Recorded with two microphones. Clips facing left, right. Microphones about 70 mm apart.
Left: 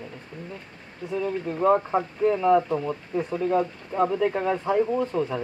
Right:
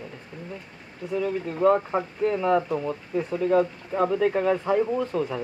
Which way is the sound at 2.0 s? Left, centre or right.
Left.